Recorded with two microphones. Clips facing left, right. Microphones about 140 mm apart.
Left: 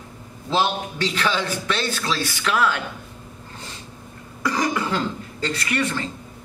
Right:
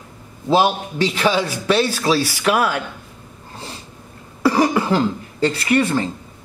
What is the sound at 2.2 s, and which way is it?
Speech, 35° right (ahead or behind).